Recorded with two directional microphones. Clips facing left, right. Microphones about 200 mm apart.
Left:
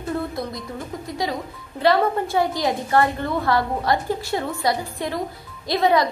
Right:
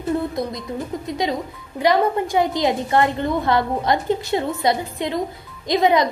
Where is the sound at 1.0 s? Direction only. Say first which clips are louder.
Right 2 dB; 20° right (ahead or behind).